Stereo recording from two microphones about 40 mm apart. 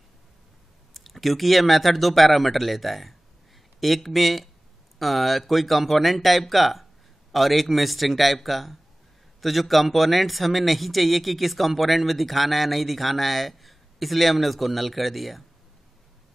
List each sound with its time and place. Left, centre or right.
0.9 s speech: centre